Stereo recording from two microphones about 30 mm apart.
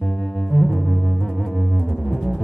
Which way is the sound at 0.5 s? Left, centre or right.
Left.